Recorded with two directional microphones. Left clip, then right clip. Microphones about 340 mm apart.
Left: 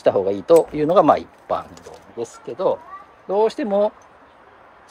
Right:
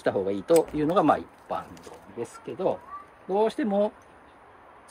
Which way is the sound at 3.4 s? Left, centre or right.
Centre.